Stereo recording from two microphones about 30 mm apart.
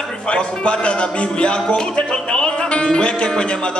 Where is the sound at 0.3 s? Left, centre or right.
Left.